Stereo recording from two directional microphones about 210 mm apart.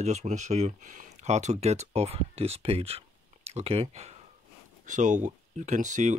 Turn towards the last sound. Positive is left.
turn(degrees=-35)  # may be behind; listen again after turning